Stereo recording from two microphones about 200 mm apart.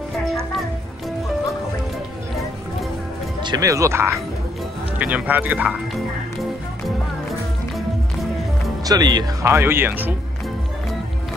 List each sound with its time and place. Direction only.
3.4 s speech: 15° right (ahead or behind)
8.8 s speech: 20° right (ahead or behind)